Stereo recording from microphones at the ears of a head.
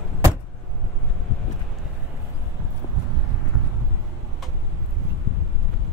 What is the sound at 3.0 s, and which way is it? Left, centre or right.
Horse, right.